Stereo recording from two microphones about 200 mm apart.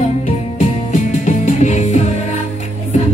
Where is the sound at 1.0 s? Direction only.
35° left (ahead or behind).